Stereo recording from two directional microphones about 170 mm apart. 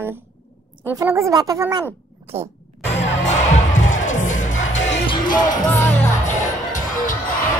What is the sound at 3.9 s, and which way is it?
Music, 45° left (ahead or behind).